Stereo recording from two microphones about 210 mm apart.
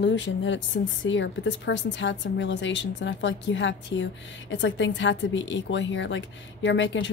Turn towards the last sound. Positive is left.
turn(degrees=60)  # may be behind; listen again after turning